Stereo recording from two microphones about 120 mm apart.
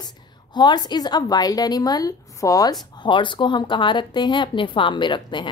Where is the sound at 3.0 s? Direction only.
45° left (ahead or behind).